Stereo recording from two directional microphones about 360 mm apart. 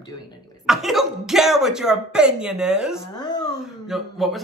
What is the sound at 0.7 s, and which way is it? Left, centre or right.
Speech, centre.